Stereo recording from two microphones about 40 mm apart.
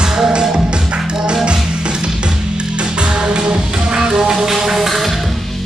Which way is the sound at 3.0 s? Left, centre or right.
Right.